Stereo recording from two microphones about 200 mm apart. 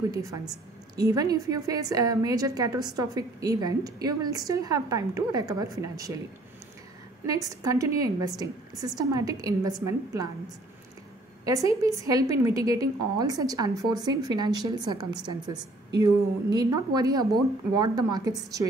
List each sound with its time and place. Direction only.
0.1 s a woman's voice: 15° right (ahead or behind)
7.2 s a woman's voice: 15° right (ahead or behind)
11.4 s a woman's voice: 15° right (ahead or behind)